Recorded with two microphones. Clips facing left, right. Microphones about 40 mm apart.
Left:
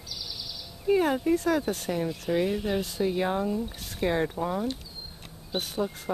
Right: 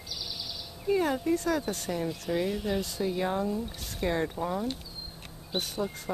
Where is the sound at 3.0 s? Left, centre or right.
Centre.